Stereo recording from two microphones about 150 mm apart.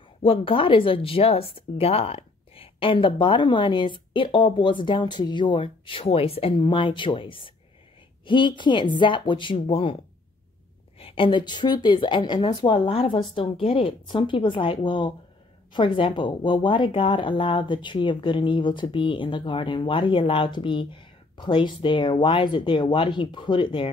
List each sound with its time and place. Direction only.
0.2 s speech: 35° left (ahead or behind)
11.0 s speech: 35° left (ahead or behind)